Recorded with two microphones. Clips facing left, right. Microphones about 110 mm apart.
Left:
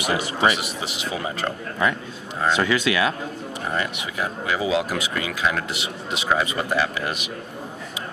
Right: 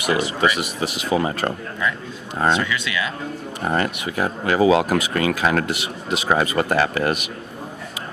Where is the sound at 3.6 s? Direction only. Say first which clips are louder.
Right 5 dB; 45° right (ahead or behind).